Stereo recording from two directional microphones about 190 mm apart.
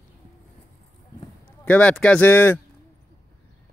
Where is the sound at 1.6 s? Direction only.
5° left (ahead or behind).